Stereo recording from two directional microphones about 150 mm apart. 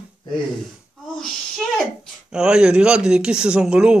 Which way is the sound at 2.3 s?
5° right (ahead or behind).